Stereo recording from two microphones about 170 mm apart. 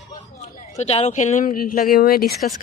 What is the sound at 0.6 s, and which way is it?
Speech, 40° left (ahead or behind).